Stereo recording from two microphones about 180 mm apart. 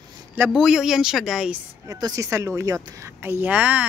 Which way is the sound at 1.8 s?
20° right (ahead or behind).